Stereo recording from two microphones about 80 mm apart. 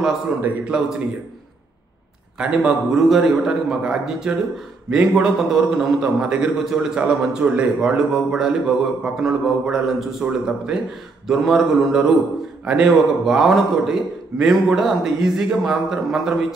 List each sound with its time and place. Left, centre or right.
0.4 s a man's voice: centre
2.3 s a man's voice: centre
6.1 s a man's voice: centre